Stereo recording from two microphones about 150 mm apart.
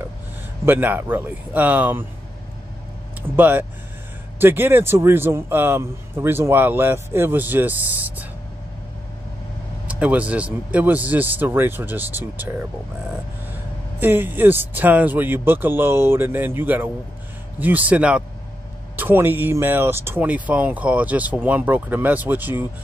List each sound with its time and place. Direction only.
0.7 s a man's voice: 10° right (ahead or behind)
3.2 s a man's voice: 15° right (ahead or behind)
9.8 s a man's voice: 10° right (ahead or behind)
13.9 s a man's voice: 15° right (ahead or behind)